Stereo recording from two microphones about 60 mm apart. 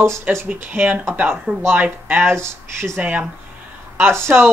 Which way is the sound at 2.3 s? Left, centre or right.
Right.